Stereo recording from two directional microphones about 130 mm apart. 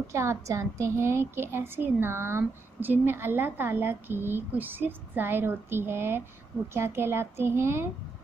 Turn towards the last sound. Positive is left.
turn(degrees=-20)  # may be behind; listen again after turning